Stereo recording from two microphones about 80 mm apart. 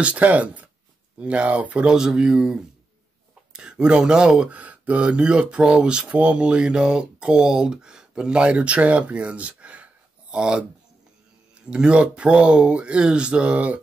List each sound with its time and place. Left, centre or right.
0.0 s speech: centre
11.6 s speech: centre